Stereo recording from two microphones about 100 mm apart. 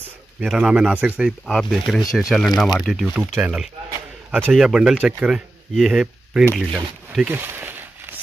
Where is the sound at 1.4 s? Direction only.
5° left (ahead or behind).